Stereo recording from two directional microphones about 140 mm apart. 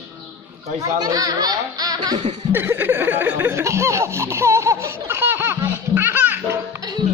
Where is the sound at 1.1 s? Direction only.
25° right (ahead or behind).